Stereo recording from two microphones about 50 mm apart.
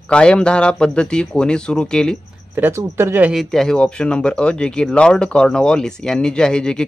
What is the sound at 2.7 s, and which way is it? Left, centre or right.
Speech, right.